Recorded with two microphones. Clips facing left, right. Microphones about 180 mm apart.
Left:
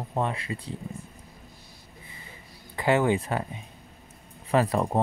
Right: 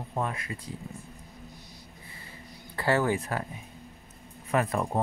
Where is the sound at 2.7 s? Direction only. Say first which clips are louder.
Left 3 dB; 20° left (ahead or behind).